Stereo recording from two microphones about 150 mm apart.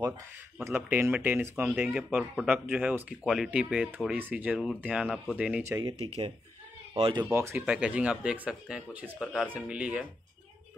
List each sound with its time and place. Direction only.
0.6 s speech: 15° right (ahead or behind)
5.6 s speech: 20° right (ahead or behind)
5.9 s speech: 40° right (ahead or behind)
6.9 s a sound: 35° right (ahead or behind)
7.2 s speech: 15° right (ahead or behind)